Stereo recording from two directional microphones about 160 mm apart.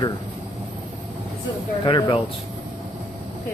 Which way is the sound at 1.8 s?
35° left (ahead or behind).